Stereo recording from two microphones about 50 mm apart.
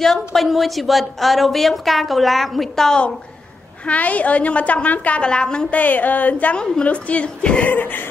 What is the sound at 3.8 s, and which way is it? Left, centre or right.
A man's voice, left.